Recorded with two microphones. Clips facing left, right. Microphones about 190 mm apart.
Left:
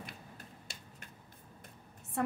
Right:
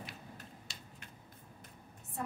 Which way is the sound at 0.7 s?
55° left (ahead or behind).